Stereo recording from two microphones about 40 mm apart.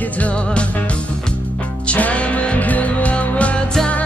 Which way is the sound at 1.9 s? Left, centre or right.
Left.